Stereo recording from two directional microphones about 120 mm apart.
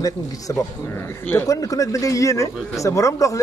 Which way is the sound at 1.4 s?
30° left (ahead or behind).